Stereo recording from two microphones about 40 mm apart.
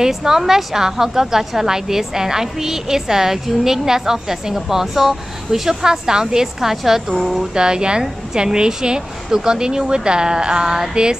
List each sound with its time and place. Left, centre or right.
0.0 s a woman's voice: centre
7.3 s a woman's voice: centre